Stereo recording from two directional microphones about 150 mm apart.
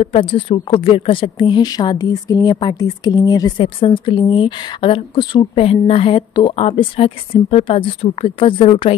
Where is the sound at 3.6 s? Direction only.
35° left (ahead or behind).